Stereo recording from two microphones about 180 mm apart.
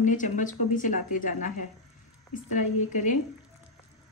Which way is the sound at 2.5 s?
45° left (ahead or behind).